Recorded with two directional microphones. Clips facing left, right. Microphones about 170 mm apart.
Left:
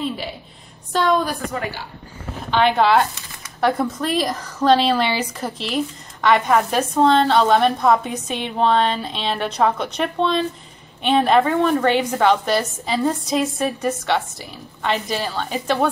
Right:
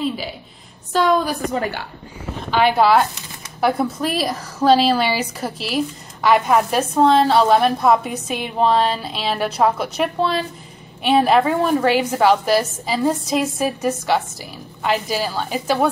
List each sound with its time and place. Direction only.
0.9 s a woman's voice: centre (ahead or behind)
2.5 s a woman's voice: 5° right (ahead or behind)